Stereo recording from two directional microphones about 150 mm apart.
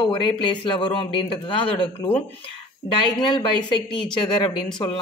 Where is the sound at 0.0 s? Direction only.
35° left (ahead or behind).